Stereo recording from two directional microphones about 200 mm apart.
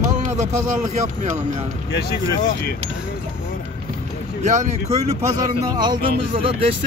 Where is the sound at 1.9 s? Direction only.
55° left (ahead or behind).